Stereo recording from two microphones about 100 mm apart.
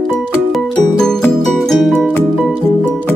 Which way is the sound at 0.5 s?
5° left (ahead or behind).